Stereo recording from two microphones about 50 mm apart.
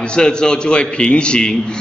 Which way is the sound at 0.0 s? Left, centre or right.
Centre.